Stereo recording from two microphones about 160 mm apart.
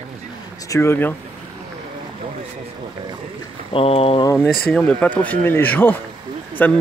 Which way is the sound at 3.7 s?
35° left (ahead or behind).